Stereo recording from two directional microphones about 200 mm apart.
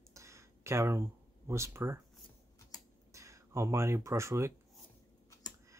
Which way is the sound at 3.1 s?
15° right (ahead or behind).